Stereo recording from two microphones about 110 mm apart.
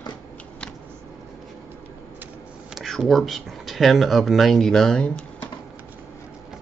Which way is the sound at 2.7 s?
Centre (ahead or behind).